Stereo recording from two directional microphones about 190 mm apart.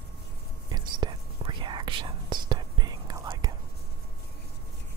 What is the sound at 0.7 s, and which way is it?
Whispering, 20° right (ahead or behind).